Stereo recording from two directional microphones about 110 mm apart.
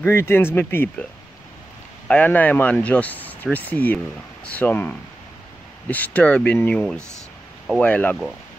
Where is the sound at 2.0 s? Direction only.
15° left (ahead or behind).